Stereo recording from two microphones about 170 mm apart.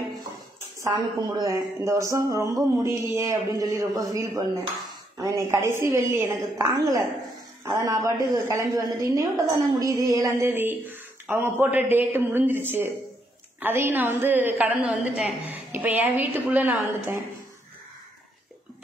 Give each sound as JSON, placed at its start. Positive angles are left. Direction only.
{"t": 0.8, "sound": "a woman's voice", "side_deg": -20}